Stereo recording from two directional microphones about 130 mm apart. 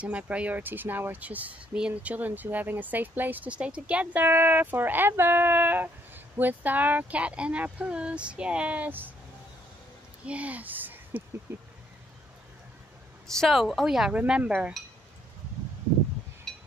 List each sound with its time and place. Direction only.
0.0 s speech: 10° right (ahead or behind)
10.2 s speech: 10° right (ahead or behind)
13.3 s speech: centre (ahead or behind)